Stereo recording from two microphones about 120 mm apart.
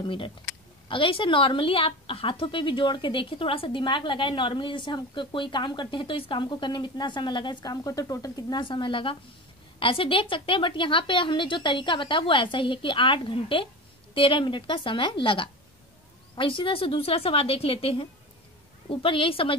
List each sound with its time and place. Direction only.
0.0 s a woman's voice: 45° left (ahead or behind)